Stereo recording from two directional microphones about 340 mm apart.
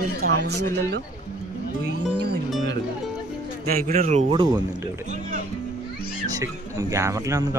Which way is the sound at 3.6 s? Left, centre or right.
Right.